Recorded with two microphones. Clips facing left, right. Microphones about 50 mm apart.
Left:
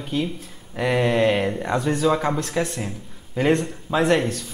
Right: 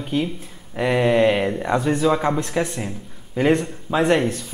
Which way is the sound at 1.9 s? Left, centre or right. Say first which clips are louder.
Even; centre.